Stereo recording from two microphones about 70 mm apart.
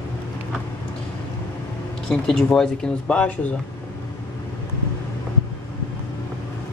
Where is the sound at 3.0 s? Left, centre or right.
Centre.